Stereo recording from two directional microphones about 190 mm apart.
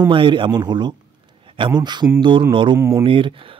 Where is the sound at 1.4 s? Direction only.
25° right (ahead or behind).